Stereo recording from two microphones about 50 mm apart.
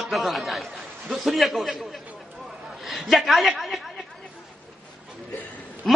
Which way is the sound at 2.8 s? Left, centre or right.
Centre.